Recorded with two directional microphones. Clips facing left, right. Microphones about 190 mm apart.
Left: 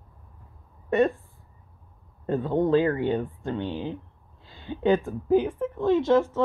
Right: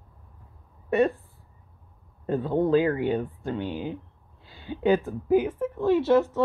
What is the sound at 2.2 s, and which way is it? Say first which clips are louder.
Speech: even; 10° right (ahead or behind).